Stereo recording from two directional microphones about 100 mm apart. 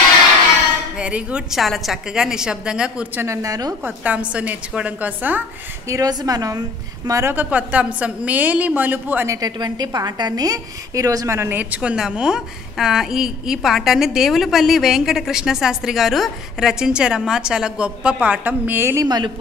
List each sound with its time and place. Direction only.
0.9 s a woman's voice: 10° right (ahead or behind)
3.2 s a woman's voice: 35° right (ahead or behind)
3.8 s a woman's voice: 15° right (ahead or behind)
5.9 s a woman's voice: 35° right (ahead or behind)
7.3 s a woman's voice: 15° right (ahead or behind)
9.3 s a woman's voice: 40° right (ahead or behind)
11.5 s a woman's voice: 15° right (ahead or behind)
19.0 s speech: 45° right (ahead or behind)